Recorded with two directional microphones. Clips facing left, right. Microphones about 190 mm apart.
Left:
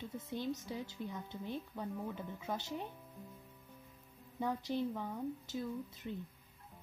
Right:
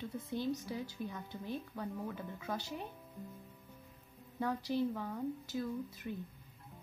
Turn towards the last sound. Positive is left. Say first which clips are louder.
# right 2 dB
turn(degrees=20)  # may be behind; listen again after turning